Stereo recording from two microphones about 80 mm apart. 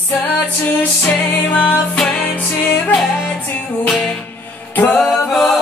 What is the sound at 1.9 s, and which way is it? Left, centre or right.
Music, centre.